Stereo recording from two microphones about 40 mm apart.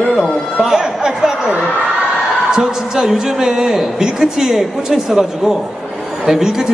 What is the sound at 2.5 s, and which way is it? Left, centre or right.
A woman's voice, centre.